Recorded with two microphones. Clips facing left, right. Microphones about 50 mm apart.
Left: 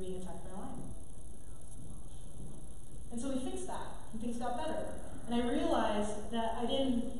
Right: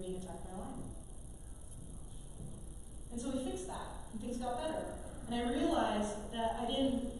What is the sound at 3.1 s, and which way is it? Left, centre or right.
A woman's voice, centre.